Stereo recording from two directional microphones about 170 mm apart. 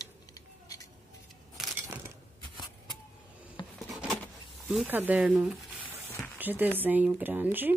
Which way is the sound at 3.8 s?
Centre (ahead or behind).